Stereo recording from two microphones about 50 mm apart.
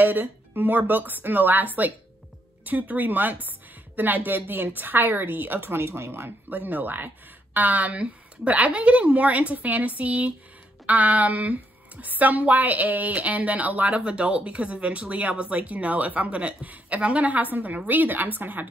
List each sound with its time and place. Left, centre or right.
0.0 s a woman's voice: right